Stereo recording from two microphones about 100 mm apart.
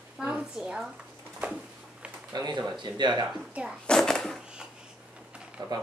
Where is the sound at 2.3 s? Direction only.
45° right (ahead or behind).